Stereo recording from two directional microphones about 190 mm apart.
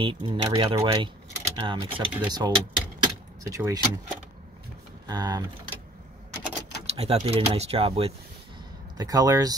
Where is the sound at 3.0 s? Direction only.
15° right (ahead or behind).